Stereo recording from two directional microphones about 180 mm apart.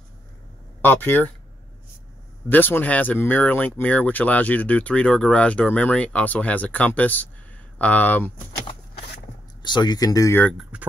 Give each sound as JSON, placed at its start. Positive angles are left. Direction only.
{"t": 0.8, "sound": "speech", "side_deg": 10}
{"t": 2.5, "sound": "speech", "side_deg": 10}
{"t": 9.6, "sound": "speech", "side_deg": 25}
{"t": 10.4, "sound": "speech", "side_deg": -5}